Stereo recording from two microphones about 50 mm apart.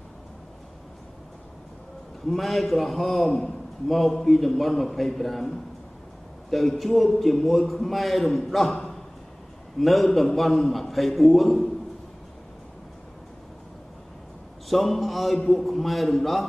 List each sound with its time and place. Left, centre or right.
2.2 s a man's voice: centre
6.5 s a man's voice: centre
14.7 s a man's voice: centre